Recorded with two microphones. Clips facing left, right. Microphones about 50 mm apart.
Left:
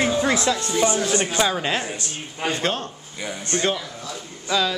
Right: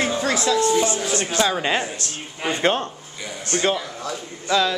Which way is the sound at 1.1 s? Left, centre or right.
Centre.